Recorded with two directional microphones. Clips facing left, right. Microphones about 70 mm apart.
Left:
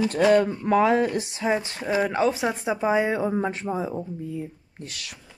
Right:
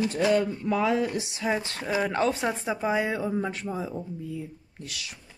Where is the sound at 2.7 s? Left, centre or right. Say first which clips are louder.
Left 6 dB; left.